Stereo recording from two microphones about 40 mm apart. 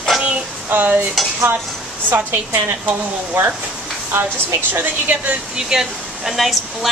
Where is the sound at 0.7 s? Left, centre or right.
Right.